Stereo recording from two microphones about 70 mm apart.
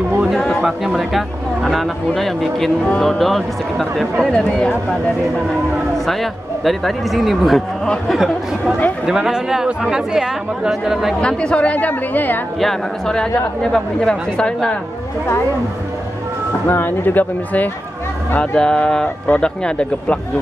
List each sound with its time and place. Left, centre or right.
0.4 s a sound: centre
0.7 s speech: centre
4.3 s speech: centre
6.6 s speech: centre
11.1 s a woman's voice: centre
12.5 s speech: centre
16.6 s a woman's voice: left; by 20.2 s centre